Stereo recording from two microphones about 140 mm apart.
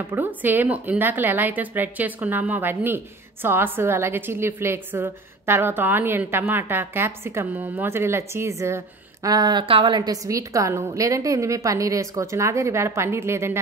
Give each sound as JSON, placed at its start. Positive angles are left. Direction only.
{"t": 0.0, "sound": "a woman's voice", "side_deg": -15}